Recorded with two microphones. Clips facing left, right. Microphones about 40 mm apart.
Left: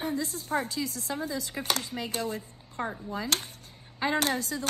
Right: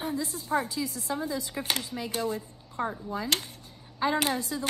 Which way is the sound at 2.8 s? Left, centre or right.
Centre.